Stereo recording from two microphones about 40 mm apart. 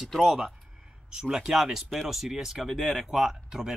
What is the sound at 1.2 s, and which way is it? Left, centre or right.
Speech, centre.